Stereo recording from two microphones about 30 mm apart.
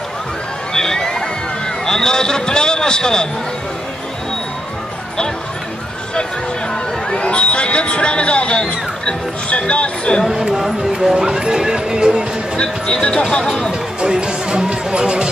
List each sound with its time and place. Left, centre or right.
0.7 s crowd: centre
1.9 s a man's voice: centre
7.1 s a sound: left
10.5 s speech: centre
12.5 s speech: left
14.0 s music: right